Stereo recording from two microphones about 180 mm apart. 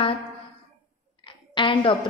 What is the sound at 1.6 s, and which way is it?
Speech, 25° left (ahead or behind).